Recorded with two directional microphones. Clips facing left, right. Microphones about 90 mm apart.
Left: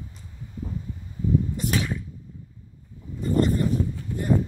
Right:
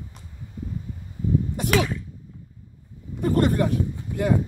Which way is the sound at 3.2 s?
65° right (ahead or behind).